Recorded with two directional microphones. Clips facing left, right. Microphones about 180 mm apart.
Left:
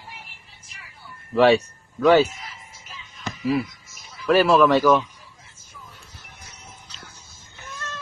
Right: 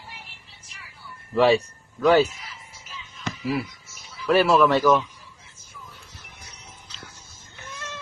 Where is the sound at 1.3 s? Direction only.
Centre (ahead or behind).